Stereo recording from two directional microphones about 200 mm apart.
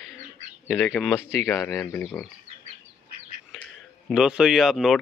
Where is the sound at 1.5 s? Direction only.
15° left (ahead or behind).